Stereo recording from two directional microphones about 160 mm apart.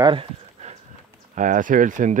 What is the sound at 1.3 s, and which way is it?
Speech, 55° right (ahead or behind).